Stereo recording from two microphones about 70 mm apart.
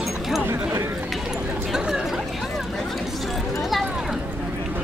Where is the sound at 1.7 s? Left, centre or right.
Centre.